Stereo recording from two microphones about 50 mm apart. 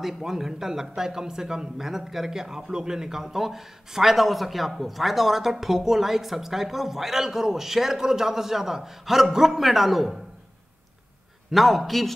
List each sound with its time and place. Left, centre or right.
0.0 s speech: centre
11.5 s a man's voice: centre